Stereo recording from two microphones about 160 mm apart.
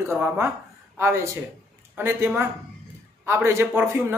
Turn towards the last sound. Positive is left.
turn(degrees=-20)  # may be behind; listen again after turning